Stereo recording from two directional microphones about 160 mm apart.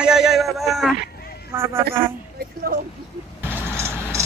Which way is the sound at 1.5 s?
15° right (ahead or behind).